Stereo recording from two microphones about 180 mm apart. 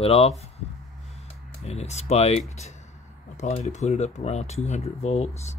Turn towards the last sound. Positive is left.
turn(degrees=35)  # may be behind; listen again after turning